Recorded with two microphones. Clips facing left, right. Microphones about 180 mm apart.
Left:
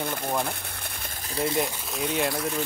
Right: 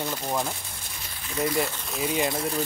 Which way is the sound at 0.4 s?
60° left (ahead or behind).